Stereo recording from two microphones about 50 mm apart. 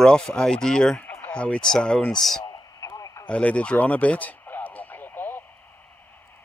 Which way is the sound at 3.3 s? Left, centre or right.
Left.